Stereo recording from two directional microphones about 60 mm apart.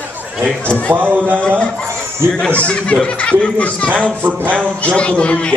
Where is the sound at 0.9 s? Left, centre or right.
Right.